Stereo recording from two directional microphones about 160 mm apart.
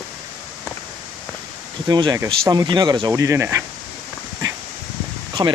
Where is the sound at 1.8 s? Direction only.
25° right (ahead or behind).